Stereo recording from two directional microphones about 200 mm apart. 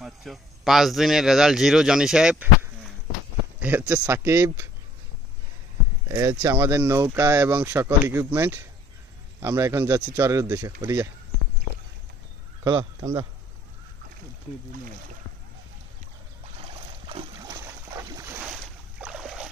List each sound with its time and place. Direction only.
0.0 s a man's voice: centre (ahead or behind)
3.5 s speech: 10° right (ahead or behind)
6.0 s speech: 15° right (ahead or behind)
12.6 s speech: 15° right (ahead or behind)
17.1 s a sound: 25° right (ahead or behind); by 19.5 s 5° right (ahead or behind)